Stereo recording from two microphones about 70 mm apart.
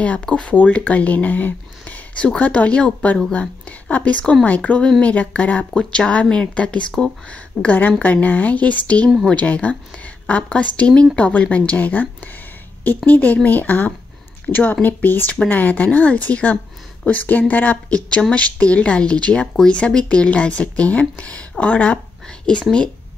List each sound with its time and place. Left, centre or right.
0.0 s speech: centre
4.2 s speech: centre; by 17.7 s left
17.8 s speech: centre